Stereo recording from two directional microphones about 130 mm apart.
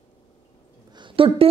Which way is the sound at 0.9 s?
40° right (ahead or behind).